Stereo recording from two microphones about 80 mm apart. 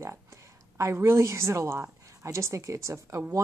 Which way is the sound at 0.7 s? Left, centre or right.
Right.